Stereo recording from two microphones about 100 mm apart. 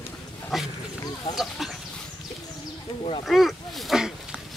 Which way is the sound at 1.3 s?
5° right (ahead or behind).